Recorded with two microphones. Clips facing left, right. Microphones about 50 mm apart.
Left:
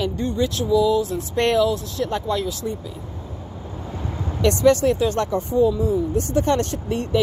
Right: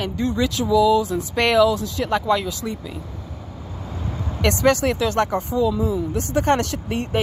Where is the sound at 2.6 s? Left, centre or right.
Right.